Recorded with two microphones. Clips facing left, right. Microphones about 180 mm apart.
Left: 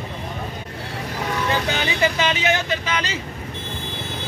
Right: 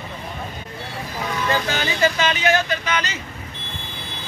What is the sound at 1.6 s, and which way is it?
Speech, 15° left (ahead or behind).